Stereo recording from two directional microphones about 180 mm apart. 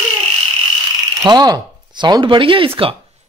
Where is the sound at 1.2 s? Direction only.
20° right (ahead or behind).